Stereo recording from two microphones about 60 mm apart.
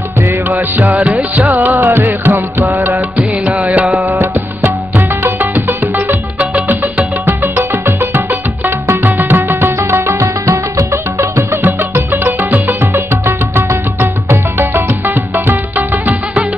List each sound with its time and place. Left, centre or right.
0.5 s music: right
1.8 s music: right
4.2 s music: right
6.5 s music: right
7.2 s music: right
10.5 s music: right
11.6 s music: right
13.1 s music: right